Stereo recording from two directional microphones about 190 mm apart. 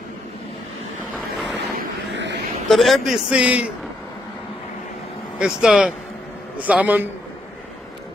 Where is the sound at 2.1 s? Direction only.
65° right (ahead or behind).